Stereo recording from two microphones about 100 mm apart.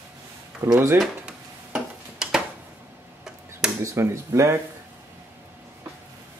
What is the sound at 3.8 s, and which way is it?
Speech, 30° right (ahead or behind).